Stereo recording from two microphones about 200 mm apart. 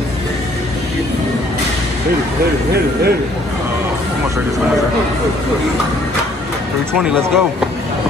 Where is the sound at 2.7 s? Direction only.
50° right (ahead or behind).